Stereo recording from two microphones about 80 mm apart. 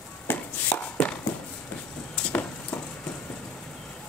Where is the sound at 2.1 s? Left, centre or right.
Centre.